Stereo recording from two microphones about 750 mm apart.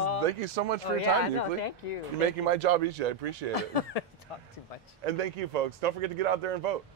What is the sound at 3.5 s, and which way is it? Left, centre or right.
Speech, left.